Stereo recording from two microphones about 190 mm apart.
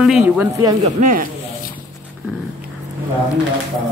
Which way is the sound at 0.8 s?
40° right (ahead or behind).